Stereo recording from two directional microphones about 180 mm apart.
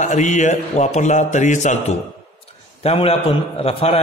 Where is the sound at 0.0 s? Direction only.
40° left (ahead or behind).